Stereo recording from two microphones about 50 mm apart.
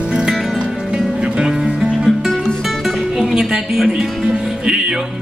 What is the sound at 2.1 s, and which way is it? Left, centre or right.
Music, centre.